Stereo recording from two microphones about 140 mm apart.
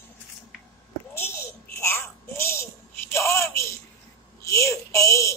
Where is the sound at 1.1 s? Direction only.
20° left (ahead or behind).